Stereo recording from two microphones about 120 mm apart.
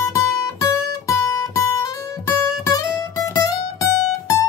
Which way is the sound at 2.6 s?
30° left (ahead or behind).